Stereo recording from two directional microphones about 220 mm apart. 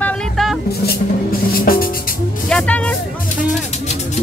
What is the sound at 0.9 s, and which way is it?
Music, 40° left (ahead or behind).